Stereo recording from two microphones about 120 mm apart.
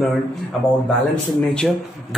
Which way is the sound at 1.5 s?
5° left (ahead or behind).